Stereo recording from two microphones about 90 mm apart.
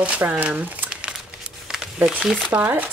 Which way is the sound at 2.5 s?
20° right (ahead or behind).